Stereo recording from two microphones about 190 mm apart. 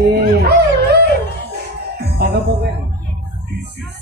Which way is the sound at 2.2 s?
60° right (ahead or behind).